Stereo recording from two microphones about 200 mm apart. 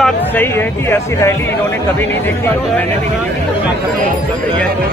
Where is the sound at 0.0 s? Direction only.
10° left (ahead or behind).